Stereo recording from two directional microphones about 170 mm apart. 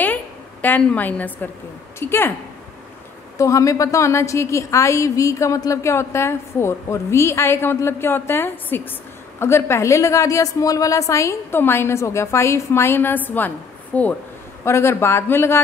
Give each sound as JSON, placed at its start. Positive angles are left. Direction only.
{"t": 0.0, "sound": "a sound", "side_deg": 10}
{"t": 2.0, "sound": "a woman's voice", "side_deg": 15}
{"t": 3.3, "sound": "a woman's voice", "side_deg": 20}